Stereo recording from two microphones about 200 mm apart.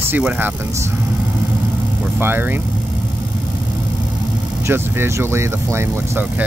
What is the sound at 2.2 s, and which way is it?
Speech, 10° right (ahead or behind).